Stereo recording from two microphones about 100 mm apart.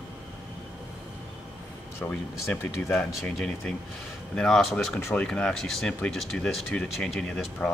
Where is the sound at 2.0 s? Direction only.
15° left (ahead or behind).